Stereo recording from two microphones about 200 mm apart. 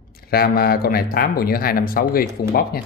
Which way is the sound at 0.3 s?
50° left (ahead or behind).